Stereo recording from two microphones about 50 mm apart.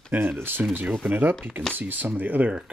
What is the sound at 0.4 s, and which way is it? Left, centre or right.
Speech, right.